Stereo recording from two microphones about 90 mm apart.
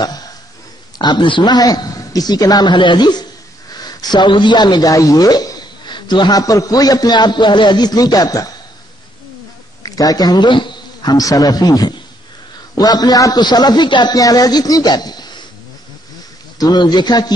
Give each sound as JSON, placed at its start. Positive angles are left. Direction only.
{"t": 0.0, "sound": "a sound", "side_deg": 45}
{"t": 0.9, "sound": "a man's voice", "side_deg": 55}
{"t": 9.8, "sound": "a man's voice", "side_deg": 40}
{"t": 14.1, "sound": "a man's voice", "side_deg": 45}
{"t": 16.5, "sound": "a man's voice", "side_deg": 50}